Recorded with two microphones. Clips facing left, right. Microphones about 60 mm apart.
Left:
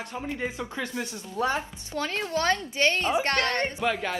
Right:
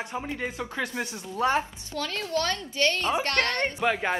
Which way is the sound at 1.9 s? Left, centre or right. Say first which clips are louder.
Left 1 dB; left.